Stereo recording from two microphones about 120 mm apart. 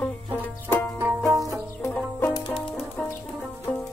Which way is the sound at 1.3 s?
30° right (ahead or behind).